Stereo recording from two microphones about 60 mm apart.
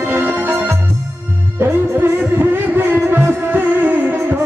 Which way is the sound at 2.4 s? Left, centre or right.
Right.